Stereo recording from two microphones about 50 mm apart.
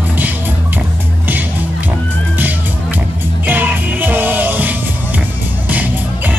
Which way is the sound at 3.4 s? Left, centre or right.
Right.